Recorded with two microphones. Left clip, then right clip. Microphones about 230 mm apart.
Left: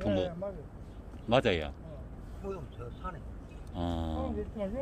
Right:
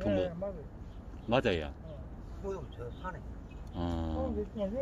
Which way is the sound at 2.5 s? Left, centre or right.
Centre.